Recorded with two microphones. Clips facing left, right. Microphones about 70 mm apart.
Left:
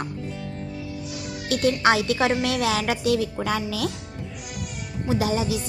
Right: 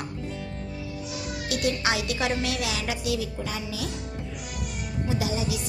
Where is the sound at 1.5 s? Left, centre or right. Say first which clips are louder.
Left 7 dB; left.